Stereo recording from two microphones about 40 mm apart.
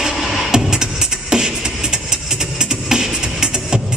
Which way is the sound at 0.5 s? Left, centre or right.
Centre.